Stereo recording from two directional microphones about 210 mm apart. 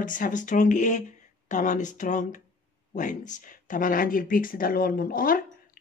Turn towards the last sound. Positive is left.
turn(degrees=40)  # may be behind; listen again after turning